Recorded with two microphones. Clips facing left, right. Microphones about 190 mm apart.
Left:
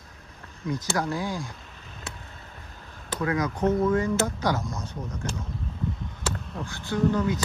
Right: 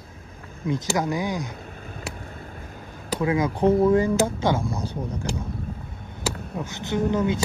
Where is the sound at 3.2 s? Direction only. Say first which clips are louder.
Right 4 dB; 25° right (ahead or behind).